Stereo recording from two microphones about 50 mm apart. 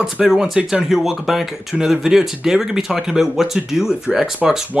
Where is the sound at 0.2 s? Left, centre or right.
Centre.